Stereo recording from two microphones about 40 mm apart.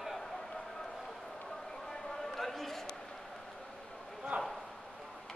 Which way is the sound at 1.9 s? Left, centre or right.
Centre.